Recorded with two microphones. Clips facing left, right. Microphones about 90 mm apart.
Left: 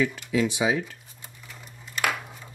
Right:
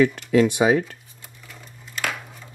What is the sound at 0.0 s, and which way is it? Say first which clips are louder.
Speech: right 7 dB; 55° right (ahead or behind).